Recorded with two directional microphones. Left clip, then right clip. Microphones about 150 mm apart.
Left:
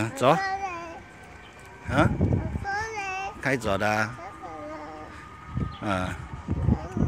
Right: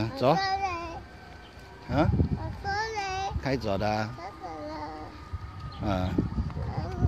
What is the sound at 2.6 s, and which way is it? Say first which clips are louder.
Child singing: right 1 dB; 25° right (ahead or behind).